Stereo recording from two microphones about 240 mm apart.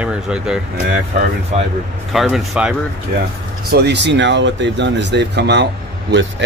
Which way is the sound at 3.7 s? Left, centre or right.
Right.